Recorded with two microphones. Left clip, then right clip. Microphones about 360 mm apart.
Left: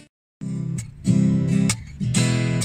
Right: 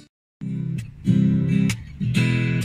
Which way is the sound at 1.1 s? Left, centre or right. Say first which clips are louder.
Even; left.